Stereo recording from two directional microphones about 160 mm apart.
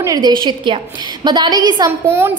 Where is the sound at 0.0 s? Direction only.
25° right (ahead or behind).